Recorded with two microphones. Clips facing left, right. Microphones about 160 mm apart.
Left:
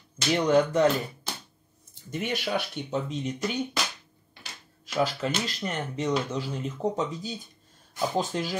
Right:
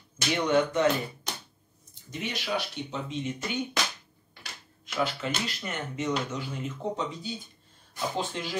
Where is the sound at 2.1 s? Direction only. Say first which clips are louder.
Left 3 dB; 50° left (ahead or behind).